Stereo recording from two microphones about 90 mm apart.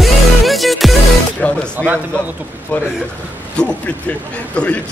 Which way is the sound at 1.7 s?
20° right (ahead or behind).